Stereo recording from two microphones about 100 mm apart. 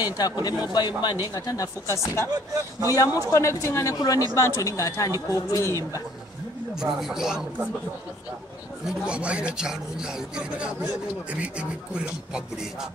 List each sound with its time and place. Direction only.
0.0 s speech: 40° left (ahead or behind)
6.7 s speech: 5° right (ahead or behind)
8.8 s speech: 10° right (ahead or behind)